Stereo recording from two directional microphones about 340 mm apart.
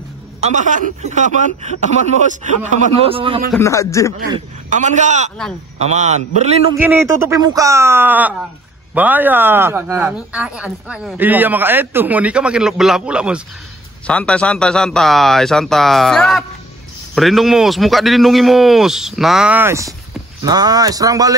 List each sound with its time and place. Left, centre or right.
0.4 s speech: right
3.5 s a man's voice: centre
4.6 s speech: right
6.8 s speech: centre